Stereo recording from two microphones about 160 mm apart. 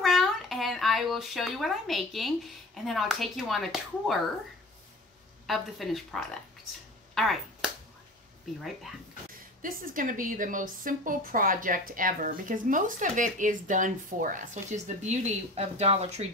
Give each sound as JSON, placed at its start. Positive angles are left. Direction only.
{"t": 0.0, "sound": "speech", "side_deg": 0}
{"t": 5.5, "sound": "a woman's voice", "side_deg": 0}
{"t": 9.3, "sound": "a woman's voice", "side_deg": -60}